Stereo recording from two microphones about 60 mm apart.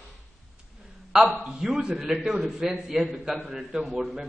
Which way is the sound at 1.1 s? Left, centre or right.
Centre.